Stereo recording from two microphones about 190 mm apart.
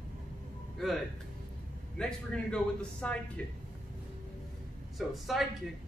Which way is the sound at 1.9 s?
5° left (ahead or behind).